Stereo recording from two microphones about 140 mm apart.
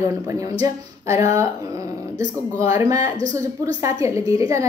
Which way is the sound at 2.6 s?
20° right (ahead or behind).